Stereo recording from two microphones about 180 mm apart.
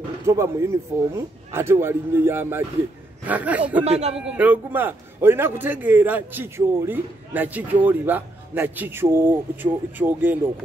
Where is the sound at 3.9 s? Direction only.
35° right (ahead or behind).